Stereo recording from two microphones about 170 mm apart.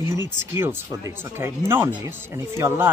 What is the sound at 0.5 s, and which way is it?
Speech, 15° right (ahead or behind).